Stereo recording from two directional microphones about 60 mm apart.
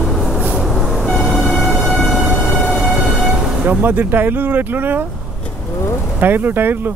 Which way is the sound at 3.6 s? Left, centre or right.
Right.